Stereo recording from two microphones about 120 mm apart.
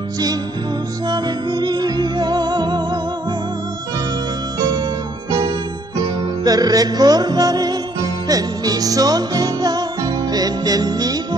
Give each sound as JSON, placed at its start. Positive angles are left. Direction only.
{"t": 1.0, "sound": "music", "side_deg": -35}
{"t": 6.4, "sound": "music", "side_deg": -30}